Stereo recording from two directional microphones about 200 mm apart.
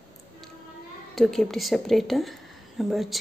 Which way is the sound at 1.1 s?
Centre (ahead or behind).